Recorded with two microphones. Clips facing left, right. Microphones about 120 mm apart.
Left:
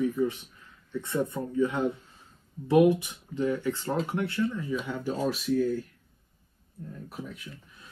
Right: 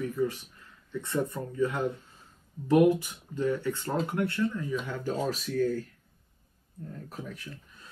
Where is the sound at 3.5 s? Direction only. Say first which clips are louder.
Even; 5° left (ahead or behind).